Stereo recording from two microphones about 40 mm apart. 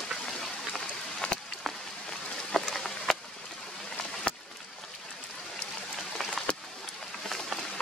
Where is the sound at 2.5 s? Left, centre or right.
Centre.